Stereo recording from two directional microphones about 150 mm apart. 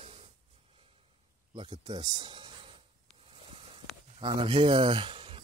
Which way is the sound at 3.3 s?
35° right (ahead or behind).